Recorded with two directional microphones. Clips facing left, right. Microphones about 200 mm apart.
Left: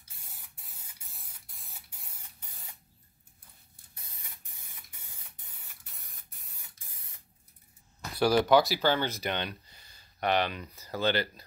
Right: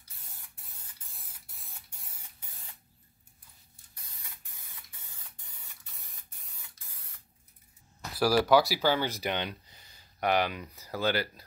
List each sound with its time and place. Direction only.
0.2 s spray: centre (ahead or behind)
5.9 s spray: centre (ahead or behind)
6.8 s spray: 20° left (ahead or behind)
8.1 s speech: 5° right (ahead or behind)